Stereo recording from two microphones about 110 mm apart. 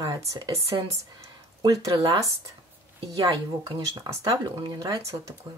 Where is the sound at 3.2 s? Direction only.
40° right (ahead or behind).